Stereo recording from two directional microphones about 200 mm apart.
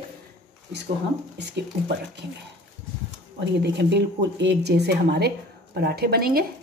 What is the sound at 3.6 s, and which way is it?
A woman's voice, 60° right (ahead or behind).